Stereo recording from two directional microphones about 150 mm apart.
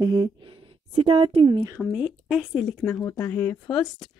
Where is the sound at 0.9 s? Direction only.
40° right (ahead or behind).